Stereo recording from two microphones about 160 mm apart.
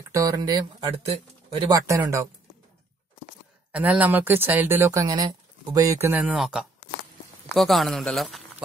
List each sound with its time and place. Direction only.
0.1 s speech: 20° right (ahead or behind)
1.7 s speech: 20° right (ahead or behind)
3.7 s a man's voice: 10° right (ahead or behind)